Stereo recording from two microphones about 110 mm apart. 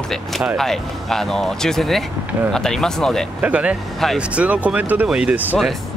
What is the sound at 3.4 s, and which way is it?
Speech, 10° right (ahead or behind).